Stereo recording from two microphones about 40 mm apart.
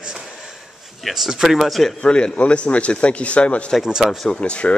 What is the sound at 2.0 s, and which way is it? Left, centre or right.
Speech, left.